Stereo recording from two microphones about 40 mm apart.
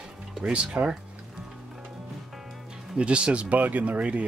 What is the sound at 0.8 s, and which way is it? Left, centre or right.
Speech, right.